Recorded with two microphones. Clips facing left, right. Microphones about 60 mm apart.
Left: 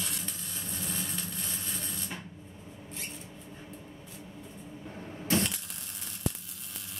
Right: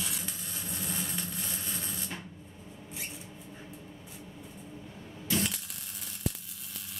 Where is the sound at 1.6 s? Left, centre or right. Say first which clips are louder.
Even; centre.